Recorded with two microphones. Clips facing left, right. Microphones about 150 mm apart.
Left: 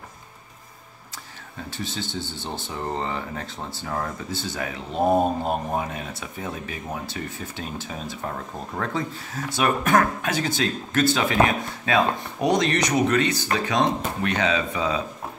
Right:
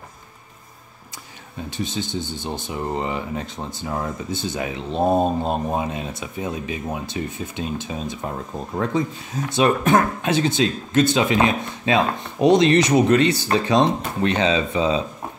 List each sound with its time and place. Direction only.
1.8 s speech: 20° right (ahead or behind)